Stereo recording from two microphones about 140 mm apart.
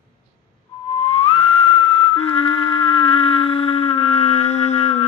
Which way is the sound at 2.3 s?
40° left (ahead or behind).